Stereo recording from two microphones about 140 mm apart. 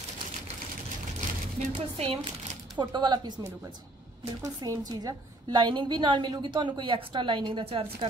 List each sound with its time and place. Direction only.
1.7 s a woman's voice: 40° right (ahead or behind)
4.4 s a woman's voice: 25° right (ahead or behind)